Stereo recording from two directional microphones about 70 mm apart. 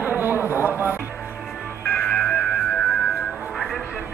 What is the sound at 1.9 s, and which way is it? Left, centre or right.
Music, centre.